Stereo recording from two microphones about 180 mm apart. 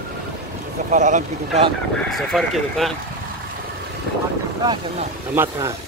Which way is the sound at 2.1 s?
Centre (ahead or behind).